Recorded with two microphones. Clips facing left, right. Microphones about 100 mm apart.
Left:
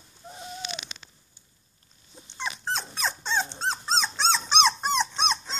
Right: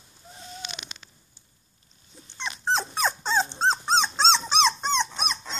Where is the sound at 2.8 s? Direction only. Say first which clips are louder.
Right 5 dB; 45° right (ahead or behind).